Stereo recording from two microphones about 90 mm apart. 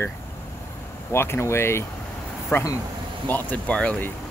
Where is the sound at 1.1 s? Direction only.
30° left (ahead or behind); by 4.1 s 10° left (ahead or behind).